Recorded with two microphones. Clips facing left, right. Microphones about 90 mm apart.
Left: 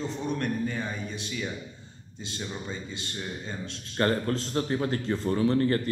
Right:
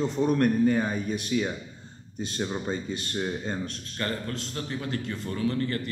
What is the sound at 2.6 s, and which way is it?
Speech, 50° right (ahead or behind).